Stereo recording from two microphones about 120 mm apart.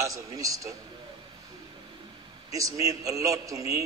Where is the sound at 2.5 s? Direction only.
30° right (ahead or behind).